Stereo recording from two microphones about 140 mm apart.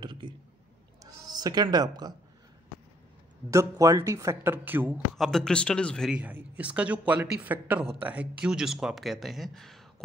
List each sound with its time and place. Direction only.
0.0 s a sound: 35° right (ahead or behind)
1.2 s speech: 30° right (ahead or behind)
3.4 s speech: 25° right (ahead or behind)
5.1 s speech: centre (ahead or behind)
6.0 s speech: 10° right (ahead or behind)